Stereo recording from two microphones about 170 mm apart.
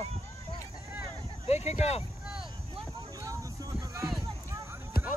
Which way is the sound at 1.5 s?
40° left (ahead or behind).